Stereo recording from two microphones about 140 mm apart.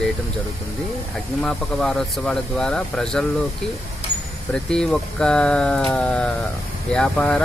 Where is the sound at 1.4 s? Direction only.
5° left (ahead or behind).